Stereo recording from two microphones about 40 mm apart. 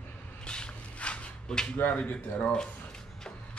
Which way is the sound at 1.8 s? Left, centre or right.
Left.